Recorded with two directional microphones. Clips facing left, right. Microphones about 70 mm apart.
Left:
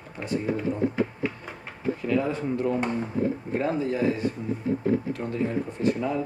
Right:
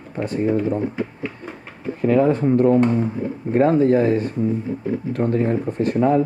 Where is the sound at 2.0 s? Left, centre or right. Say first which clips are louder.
Right 11 dB; right.